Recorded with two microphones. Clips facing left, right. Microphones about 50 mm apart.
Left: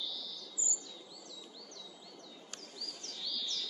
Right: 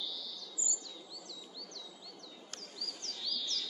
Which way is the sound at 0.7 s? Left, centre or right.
Left.